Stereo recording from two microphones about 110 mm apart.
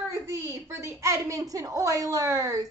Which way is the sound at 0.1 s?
25° right (ahead or behind).